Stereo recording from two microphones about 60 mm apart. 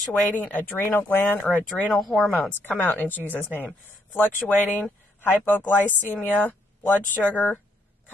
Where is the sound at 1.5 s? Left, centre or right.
Centre.